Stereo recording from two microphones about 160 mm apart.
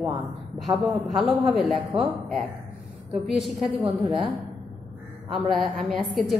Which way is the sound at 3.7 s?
35° right (ahead or behind).